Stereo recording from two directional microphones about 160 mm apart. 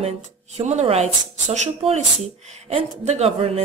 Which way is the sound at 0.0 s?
45° right (ahead or behind).